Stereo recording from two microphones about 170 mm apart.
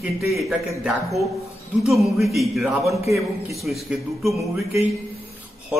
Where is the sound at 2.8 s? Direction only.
15° right (ahead or behind).